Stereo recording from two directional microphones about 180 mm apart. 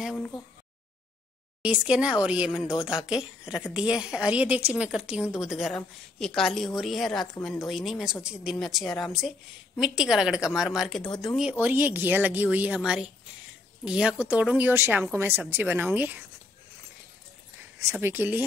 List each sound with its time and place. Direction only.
0.0 s speech: centre (ahead or behind)
1.6 s a woman's voice: 5° right (ahead or behind)
18.0 s a woman's voice: 10° right (ahead or behind)